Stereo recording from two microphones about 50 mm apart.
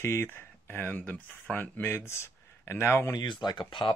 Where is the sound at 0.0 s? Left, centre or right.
Left.